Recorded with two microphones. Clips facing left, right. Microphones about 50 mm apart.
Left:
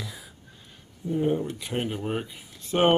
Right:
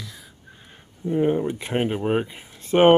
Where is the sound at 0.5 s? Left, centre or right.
Right.